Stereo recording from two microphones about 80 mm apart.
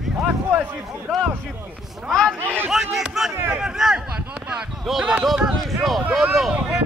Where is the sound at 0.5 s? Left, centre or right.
Right.